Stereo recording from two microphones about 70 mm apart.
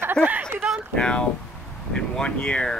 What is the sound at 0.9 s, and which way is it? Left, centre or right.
Speech, centre.